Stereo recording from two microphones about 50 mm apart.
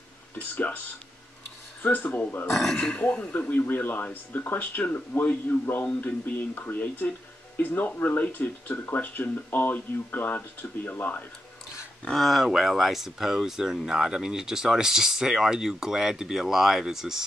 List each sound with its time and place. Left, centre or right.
1.8 s speech: left
2.7 s speech: centre
3.3 s speech: left
12.1 s speech: centre